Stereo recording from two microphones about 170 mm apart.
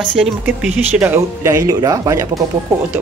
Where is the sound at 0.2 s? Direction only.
5° right (ahead or behind).